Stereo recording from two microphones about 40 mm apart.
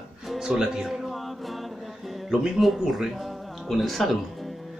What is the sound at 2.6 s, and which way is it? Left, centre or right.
Speech, centre.